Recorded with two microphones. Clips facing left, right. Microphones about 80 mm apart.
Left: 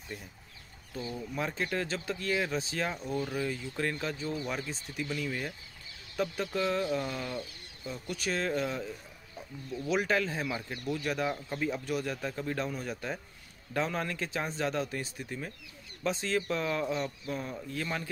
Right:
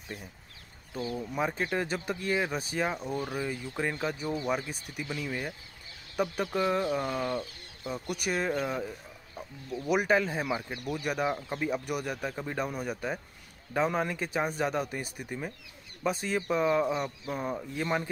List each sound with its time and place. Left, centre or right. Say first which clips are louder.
0.9 s speech: right 3 dB; centre
7.9 s speech: right 2 dB; centre